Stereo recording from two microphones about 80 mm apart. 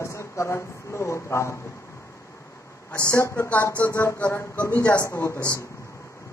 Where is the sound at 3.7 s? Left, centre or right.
Left.